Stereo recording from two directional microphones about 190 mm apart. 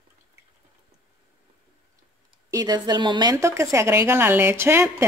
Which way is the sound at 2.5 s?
20° right (ahead or behind).